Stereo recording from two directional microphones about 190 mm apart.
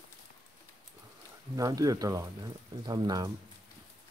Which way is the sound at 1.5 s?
20° right (ahead or behind).